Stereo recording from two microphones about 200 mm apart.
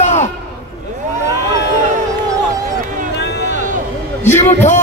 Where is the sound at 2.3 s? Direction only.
20° right (ahead or behind).